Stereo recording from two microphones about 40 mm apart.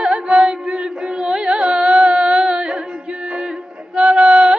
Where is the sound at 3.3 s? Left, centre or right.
Right.